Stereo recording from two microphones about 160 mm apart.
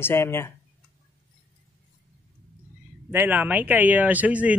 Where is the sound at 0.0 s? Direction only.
15° left (ahead or behind).